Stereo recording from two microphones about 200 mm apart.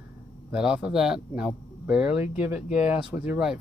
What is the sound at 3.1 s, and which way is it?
Speech, 5° right (ahead or behind).